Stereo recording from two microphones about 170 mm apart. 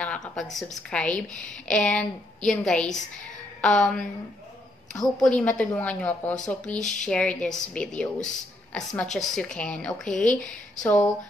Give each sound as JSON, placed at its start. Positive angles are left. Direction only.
{"t": 0.0, "sound": "a sound", "side_deg": 5}
{"t": 0.6, "sound": "a woman's voice", "side_deg": 5}
{"t": 4.9, "sound": "a woman's voice", "side_deg": 20}
{"t": 5.2, "sound": "a woman's voice", "side_deg": 5}